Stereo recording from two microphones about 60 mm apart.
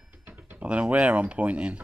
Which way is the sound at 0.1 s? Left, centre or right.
Right.